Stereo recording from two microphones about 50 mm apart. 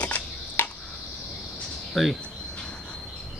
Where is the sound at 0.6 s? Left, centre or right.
Left.